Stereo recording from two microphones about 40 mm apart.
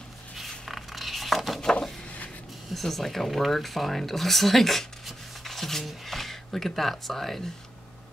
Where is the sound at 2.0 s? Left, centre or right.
Left.